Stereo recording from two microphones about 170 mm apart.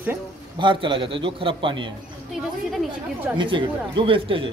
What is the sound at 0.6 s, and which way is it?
A man's voice, 30° right (ahead or behind).